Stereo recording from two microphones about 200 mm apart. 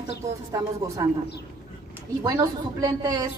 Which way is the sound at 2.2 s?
20° right (ahead or behind).